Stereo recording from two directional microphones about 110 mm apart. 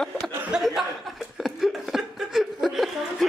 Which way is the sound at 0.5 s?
5° right (ahead or behind).